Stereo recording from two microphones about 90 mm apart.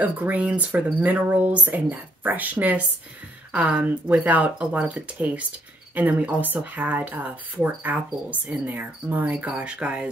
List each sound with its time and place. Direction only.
0.0 s speech: 15° right (ahead or behind)